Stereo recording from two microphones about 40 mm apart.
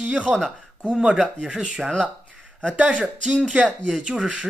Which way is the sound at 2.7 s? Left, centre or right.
Right.